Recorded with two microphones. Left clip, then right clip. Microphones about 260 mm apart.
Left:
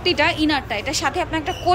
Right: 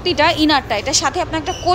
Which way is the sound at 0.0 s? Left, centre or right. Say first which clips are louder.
Right 4 dB; centre.